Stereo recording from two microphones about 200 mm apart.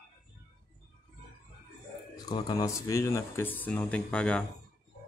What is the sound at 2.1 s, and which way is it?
Speech, 20° left (ahead or behind).